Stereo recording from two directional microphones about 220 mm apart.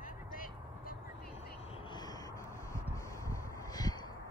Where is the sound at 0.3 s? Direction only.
40° left (ahead or behind).